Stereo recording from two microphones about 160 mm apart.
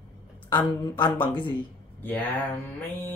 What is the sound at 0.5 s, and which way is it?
Speech, 30° left (ahead or behind).